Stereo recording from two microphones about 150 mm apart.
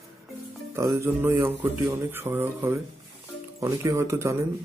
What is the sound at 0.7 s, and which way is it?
Speech, 20° right (ahead or behind).